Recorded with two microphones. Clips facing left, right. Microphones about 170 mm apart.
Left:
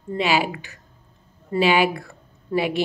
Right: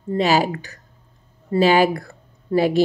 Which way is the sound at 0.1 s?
40° right (ahead or behind).